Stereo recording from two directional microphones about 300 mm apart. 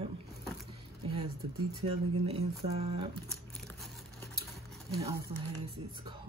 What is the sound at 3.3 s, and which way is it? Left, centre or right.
Crumpling, centre.